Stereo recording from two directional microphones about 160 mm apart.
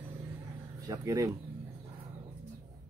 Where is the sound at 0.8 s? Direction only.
20° right (ahead or behind).